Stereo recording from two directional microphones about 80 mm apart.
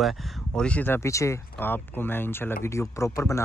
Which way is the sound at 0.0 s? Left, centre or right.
Centre.